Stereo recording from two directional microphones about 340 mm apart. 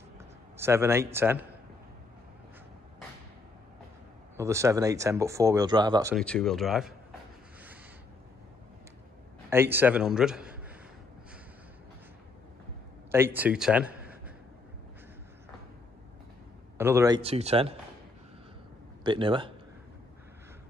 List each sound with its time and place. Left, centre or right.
0.6 s speech: centre
4.4 s speech: centre
6.1 s a man's voice: centre
9.5 s a man's voice: centre
13.1 s a man's voice: centre
16.7 s speech: centre
19.0 s speech: centre